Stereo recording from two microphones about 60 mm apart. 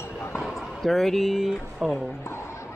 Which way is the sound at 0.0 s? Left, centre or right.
Left.